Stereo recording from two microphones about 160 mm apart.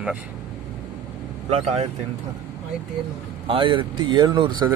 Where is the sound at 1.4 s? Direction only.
40° right (ahead or behind).